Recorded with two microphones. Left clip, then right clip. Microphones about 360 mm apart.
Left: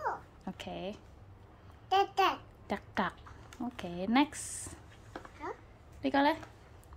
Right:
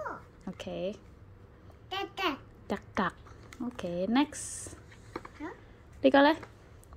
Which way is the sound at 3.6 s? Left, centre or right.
Centre.